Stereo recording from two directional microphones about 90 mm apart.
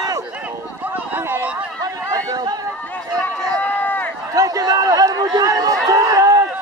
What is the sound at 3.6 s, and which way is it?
Run, 20° left (ahead or behind).